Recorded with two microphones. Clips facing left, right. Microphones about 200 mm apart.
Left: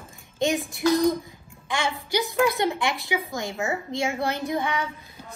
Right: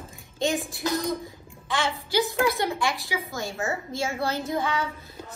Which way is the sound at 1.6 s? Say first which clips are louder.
Even; 15° left (ahead or behind).